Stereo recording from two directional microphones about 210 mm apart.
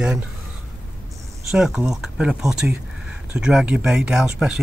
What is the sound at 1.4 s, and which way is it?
Speech, 5° right (ahead or behind).